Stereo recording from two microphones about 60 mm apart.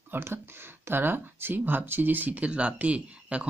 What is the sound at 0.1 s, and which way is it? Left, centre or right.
Speech, right.